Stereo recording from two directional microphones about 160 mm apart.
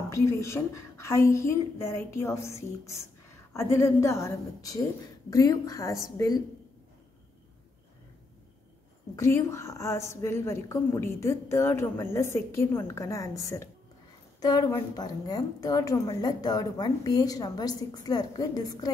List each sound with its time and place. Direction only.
0.1 s a woman's voice: 15° left (ahead or behind)
9.1 s a woman's voice: 15° left (ahead or behind)